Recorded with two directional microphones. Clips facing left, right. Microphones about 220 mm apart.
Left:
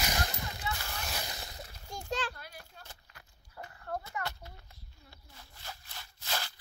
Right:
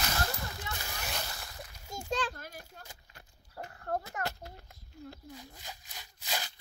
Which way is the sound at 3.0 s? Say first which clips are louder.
Right 2 dB; 30° right (ahead or behind).